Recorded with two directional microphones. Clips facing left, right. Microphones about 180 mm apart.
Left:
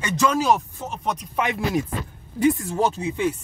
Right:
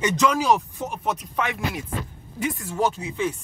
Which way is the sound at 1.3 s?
15° left (ahead or behind).